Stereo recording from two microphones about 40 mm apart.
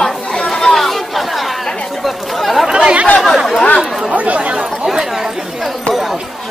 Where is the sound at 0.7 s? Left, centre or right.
Centre.